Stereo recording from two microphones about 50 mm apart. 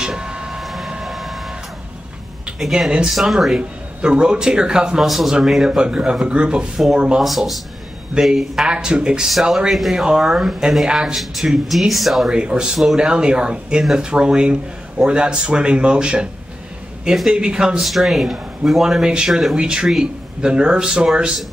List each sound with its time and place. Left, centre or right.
0.0 s vehicle: centre
0.6 s vehicle: centre
2.6 s speech: centre
5.0 s speech: centre
7.2 s speech: centre
8.1 s speech: centre
10.9 s speech: centre
11.9 s speech: centre
12.3 s speech: centre
17.7 s speech: centre